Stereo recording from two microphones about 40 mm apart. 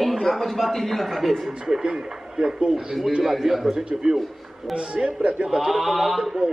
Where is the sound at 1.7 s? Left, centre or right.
Centre.